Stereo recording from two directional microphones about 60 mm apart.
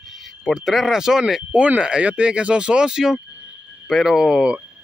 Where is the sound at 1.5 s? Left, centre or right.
Right.